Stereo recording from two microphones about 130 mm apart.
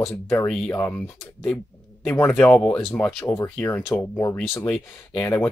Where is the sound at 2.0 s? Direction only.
15° left (ahead or behind).